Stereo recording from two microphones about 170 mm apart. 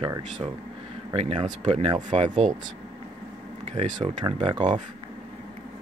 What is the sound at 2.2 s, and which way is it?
Speech, 45° right (ahead or behind).